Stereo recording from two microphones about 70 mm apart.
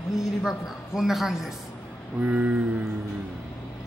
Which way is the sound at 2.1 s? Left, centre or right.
Right.